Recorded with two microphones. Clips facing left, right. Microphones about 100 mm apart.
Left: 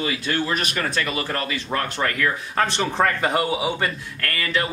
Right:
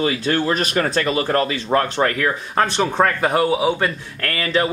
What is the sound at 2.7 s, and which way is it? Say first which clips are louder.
Speech: right 3 dB; 15° right (ahead or behind).